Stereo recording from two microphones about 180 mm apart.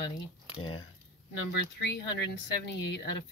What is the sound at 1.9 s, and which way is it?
Speech, 75° left (ahead or behind).